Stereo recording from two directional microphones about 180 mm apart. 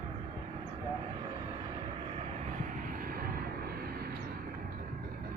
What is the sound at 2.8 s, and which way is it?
Vehicle, 50° right (ahead or behind).